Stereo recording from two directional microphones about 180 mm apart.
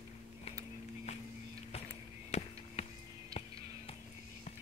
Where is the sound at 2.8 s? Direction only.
35° left (ahead or behind).